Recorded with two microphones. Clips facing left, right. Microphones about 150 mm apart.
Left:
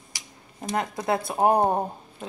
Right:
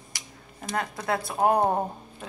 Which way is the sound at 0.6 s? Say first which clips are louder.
Left 3 dB; 20° left (ahead or behind).